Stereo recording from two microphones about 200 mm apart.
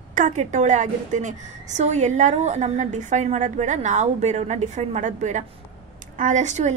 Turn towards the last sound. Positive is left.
turn(degrees=-35)  # may be behind; listen again after turning